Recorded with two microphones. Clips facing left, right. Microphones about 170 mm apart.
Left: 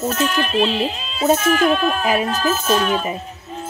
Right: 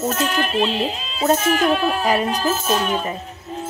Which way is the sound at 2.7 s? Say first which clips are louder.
Left 5 dB; 15° right (ahead or behind).